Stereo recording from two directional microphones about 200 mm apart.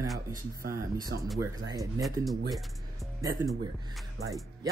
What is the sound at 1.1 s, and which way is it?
Speech, 55° right (ahead or behind).